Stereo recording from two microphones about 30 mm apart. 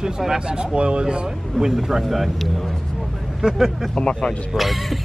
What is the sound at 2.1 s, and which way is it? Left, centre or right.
Speech, centre.